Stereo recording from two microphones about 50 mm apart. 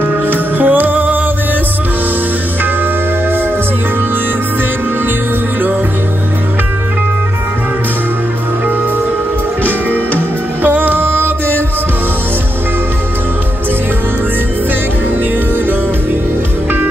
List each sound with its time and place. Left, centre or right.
0.3 s music: right
10.6 s music: right